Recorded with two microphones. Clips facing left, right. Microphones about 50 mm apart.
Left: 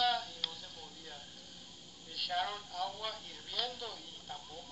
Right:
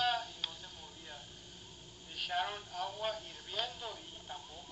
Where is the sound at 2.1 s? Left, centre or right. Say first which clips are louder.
Even; right.